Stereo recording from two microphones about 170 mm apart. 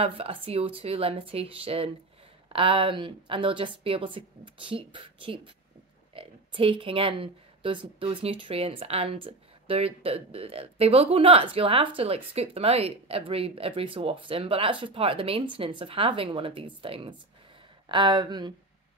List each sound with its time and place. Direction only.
0.0 s a woman's voice: 35° right (ahead or behind)